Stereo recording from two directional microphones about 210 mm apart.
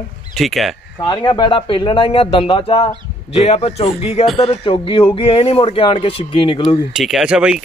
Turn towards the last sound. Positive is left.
turn(degrees=-5)  # may be behind; listen again after turning